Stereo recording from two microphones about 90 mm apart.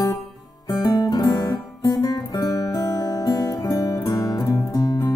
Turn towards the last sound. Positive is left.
turn(degrees=45)  # may be behind; listen again after turning